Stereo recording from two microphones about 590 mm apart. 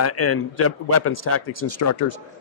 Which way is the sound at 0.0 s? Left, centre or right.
Left.